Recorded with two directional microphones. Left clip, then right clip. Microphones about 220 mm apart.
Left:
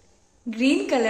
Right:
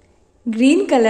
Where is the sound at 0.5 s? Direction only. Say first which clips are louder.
Right 7 dB; 25° right (ahead or behind).